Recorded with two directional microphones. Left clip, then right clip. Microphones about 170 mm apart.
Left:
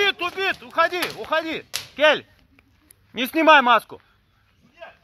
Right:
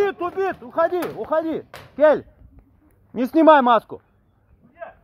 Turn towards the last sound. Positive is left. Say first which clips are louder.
# right 1 dB
turn(degrees=-35)  # may be behind; listen again after turning